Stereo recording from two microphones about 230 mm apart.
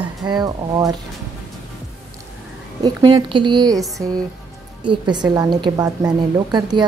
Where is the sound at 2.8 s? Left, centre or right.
Centre.